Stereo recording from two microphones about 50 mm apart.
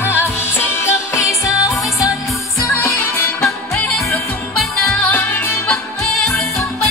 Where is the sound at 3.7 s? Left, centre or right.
Centre.